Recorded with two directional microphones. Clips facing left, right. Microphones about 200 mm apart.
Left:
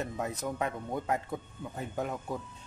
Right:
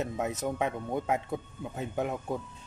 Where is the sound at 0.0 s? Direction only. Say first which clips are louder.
Right 3 dB; 20° right (ahead or behind).